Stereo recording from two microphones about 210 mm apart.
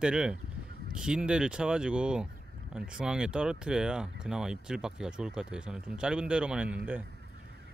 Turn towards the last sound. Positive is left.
turn(degrees=-5)  # may be behind; listen again after turning